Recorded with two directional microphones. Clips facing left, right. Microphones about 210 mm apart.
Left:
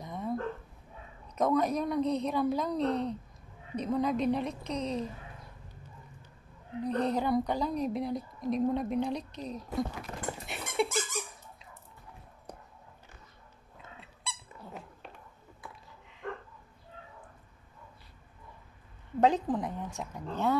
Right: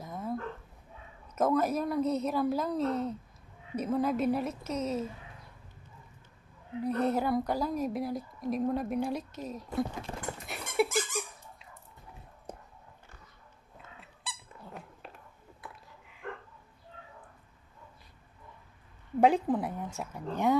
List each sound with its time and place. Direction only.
0.0 s dog: centre (ahead or behind)
1.3 s a woman's voice: 5° right (ahead or behind)
6.8 s a woman's voice: 5° right (ahead or behind)
10.4 s dog: centre (ahead or behind)
12.5 s whispering: 25° right (ahead or behind)
14.2 s squeak: centre (ahead or behind)
19.1 s speech: 10° right (ahead or behind)